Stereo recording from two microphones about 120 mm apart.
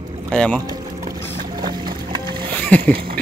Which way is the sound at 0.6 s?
30° right (ahead or behind).